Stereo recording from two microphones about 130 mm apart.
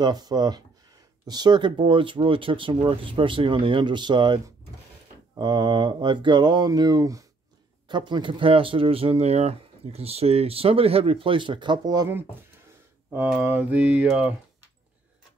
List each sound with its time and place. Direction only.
0.0 s speech: 30° right (ahead or behind)
5.4 s speech: 35° right (ahead or behind)
13.4 s mantra: 15° right (ahead or behind)